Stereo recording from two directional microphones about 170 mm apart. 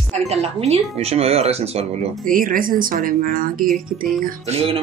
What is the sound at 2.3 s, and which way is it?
Speech, 55° right (ahead or behind).